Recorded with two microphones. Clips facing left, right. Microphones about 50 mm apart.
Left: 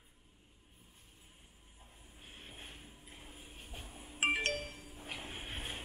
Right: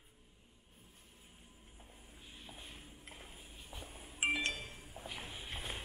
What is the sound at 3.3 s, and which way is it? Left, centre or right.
Train, left.